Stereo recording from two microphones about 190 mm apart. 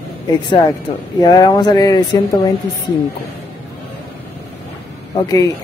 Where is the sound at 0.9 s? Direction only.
25° left (ahead or behind).